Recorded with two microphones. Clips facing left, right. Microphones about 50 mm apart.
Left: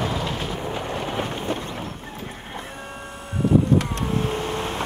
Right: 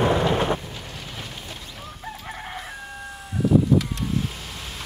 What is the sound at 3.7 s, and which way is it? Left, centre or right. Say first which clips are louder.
Vehicle: left 1 dB; left.